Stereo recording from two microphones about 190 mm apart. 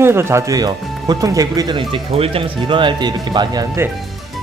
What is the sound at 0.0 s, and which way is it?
Speech, 15° right (ahead or behind).